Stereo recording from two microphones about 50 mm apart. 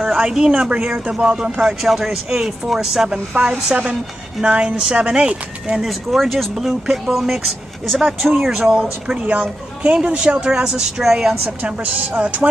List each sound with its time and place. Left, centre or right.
0.1 s speech: centre
1.8 s speech: centre
3.3 s speech: right
5.8 s speech: centre
8.5 s speech: centre
9.2 s speech: right; by 11.3 s centre
11.4 s speech: right